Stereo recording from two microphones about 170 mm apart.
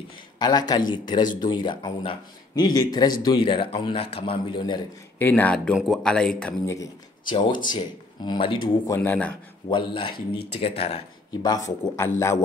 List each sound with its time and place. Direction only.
0.4 s speech: 25° left (ahead or behind)
5.2 s speech: 10° left (ahead or behind)
6.6 s speech: 20° left (ahead or behind)
9.7 s speech: 30° left (ahead or behind)
10.1 s speech: 70° left (ahead or behind)
10.8 s speech: 35° left (ahead or behind)
11.4 s speech: 20° left (ahead or behind)